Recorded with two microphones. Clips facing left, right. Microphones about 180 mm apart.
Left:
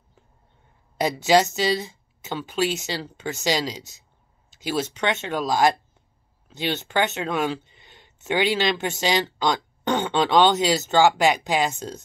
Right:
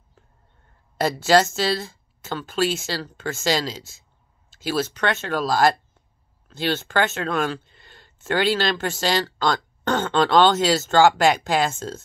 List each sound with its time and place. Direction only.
1.2 s speech: 15° left (ahead or behind)